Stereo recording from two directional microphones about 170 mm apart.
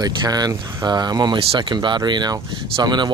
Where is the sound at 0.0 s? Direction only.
25° right (ahead or behind).